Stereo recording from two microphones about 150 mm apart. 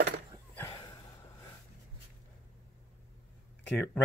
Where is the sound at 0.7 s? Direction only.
30° left (ahead or behind).